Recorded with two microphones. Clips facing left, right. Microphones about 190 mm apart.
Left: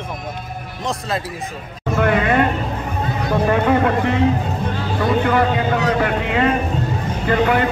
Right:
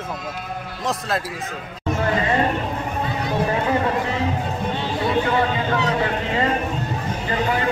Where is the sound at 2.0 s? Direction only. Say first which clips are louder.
Left 5 dB; 65° left (ahead or behind).